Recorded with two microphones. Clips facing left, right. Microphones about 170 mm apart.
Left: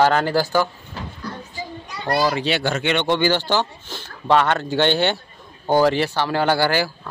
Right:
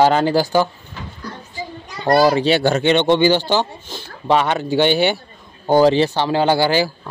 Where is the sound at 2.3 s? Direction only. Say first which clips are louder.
Right 6 dB; 35° right (ahead or behind).